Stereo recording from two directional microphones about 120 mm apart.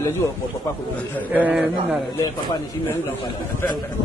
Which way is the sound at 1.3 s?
15° right (ahead or behind).